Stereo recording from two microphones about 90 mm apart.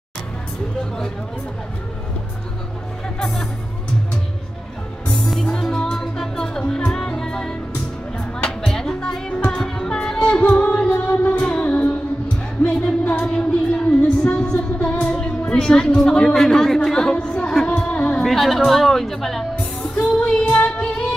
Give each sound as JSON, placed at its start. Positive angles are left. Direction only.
{"t": 5.0, "sound": "music", "side_deg": 5}
{"t": 14.2, "sound": "a woman's voice", "side_deg": 15}
{"t": 18.2, "sound": "speech", "side_deg": 0}
{"t": 19.5, "sound": "music", "side_deg": 15}